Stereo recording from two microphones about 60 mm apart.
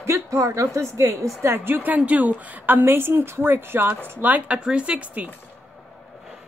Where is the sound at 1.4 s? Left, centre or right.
Right.